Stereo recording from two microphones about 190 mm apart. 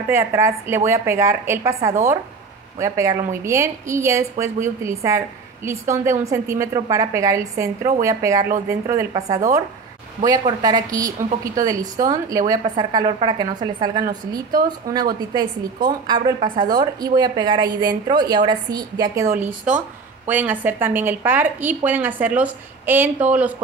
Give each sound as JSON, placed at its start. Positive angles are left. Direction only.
{"t": 0.1, "sound": "a woman's voice", "side_deg": -15}
{"t": 14.6, "sound": "a woman's voice", "side_deg": -50}
{"t": 15.3, "sound": "a woman's voice", "side_deg": -20}
{"t": 19.7, "sound": "a woman's voice", "side_deg": -5}